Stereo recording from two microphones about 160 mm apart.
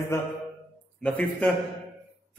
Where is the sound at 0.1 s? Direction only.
15° left (ahead or behind).